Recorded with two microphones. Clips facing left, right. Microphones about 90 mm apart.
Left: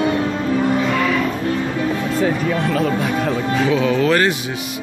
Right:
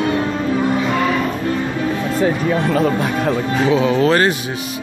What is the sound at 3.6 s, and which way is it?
Speech, 25° right (ahead or behind).